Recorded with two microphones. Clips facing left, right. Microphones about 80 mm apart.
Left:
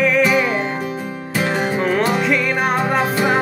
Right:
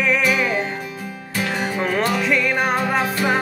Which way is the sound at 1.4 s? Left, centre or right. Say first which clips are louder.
Left 4 dB; left.